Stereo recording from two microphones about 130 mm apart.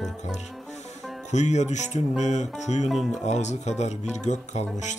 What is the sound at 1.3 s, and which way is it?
Speech, 65° left (ahead or behind).